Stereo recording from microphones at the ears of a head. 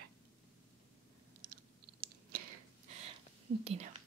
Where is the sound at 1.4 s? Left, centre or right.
Right.